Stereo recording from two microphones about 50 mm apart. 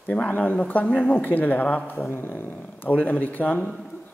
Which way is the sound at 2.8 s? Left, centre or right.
Left.